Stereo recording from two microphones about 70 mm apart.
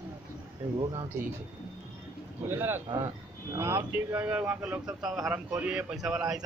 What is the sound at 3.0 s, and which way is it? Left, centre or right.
Speech, right.